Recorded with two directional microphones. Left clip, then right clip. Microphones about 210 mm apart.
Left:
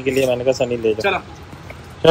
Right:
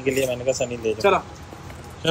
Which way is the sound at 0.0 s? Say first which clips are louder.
Left 5 dB; centre (ahead or behind).